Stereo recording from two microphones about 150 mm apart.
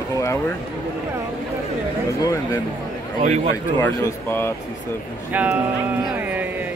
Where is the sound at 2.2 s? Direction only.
20° left (ahead or behind).